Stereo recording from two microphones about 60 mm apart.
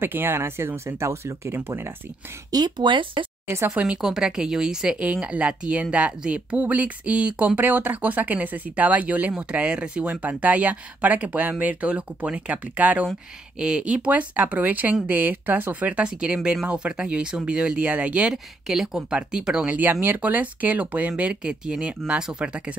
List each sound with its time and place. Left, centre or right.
0.0 s speech: right
2.5 s speech: right
3.4 s speech: right
3.7 s a woman's voice: right
4.0 s a woman's voice: centre
18.3 s a woman's voice: centre